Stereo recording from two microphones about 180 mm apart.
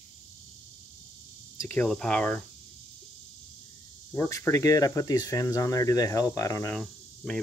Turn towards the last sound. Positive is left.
turn(degrees=0)  # may be behind; listen again after turning